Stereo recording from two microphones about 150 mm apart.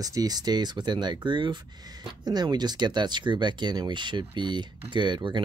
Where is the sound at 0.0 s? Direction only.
25° right (ahead or behind).